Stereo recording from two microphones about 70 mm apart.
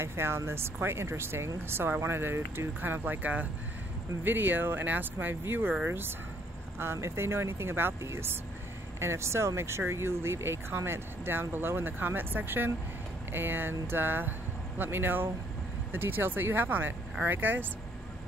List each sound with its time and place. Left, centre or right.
0.0 s speech: right